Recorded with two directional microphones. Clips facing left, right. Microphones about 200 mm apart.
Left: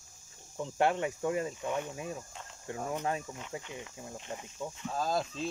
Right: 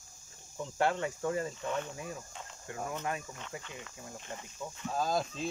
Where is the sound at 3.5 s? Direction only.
20° left (ahead or behind).